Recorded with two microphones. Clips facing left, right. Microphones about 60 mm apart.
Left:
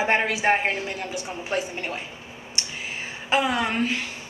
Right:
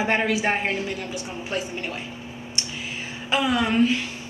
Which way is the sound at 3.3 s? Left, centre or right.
Left.